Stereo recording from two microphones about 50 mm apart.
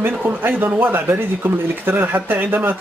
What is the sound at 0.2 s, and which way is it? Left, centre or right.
Speech, right.